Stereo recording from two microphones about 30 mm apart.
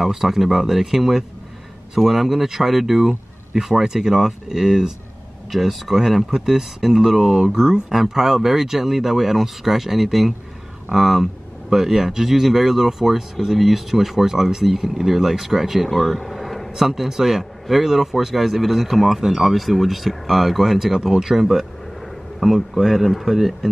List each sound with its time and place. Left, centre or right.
0.0 s speech: centre
3.5 s speech: centre
5.5 s speech: centre
15.9 s a sound: centre
16.7 s speech: centre
21.5 s speech: centre